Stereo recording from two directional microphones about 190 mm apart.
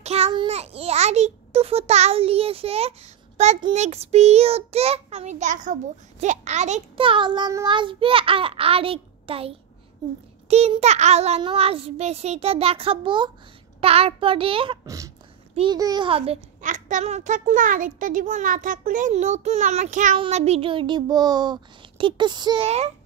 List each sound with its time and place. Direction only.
0.0 s a child's voice: 30° right (ahead or behind)
3.4 s child singing: 35° right (ahead or behind)
10.5 s child singing: 35° right (ahead or behind)
13.7 s a child's voice: 30° right (ahead or behind)
15.5 s child singing: 25° right (ahead or behind); by 20.2 s 40° right (ahead or behind)
20.2 s a child's voice: 35° right (ahead or behind)